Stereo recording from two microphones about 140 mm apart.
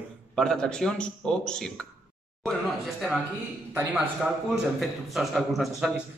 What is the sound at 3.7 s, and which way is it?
Speech, 15° right (ahead or behind).